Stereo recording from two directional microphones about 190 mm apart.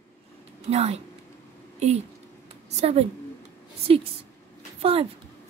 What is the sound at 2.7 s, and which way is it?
Speech, 35° right (ahead or behind).